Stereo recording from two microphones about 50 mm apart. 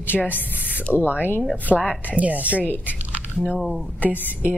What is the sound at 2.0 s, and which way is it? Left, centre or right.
Speech, right.